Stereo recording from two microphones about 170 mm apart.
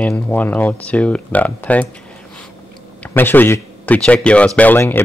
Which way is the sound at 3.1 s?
10° left (ahead or behind).